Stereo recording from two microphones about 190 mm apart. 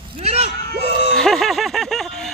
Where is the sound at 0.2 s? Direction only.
35° right (ahead or behind).